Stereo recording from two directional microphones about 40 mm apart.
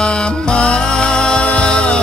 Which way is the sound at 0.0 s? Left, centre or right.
Left.